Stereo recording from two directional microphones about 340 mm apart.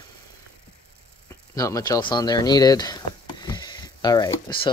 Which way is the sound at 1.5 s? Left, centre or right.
Centre.